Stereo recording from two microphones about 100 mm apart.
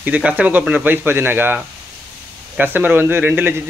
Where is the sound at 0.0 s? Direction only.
15° right (ahead or behind).